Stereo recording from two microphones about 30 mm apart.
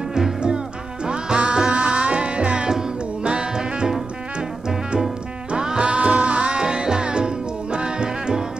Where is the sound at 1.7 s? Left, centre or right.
Right.